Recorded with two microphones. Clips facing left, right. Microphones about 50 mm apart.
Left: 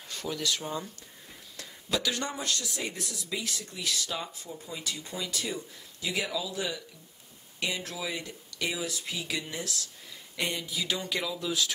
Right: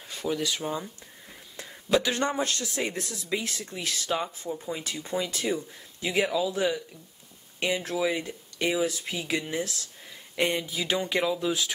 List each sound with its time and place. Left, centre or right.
0.1 s speech: centre
1.6 s speech: right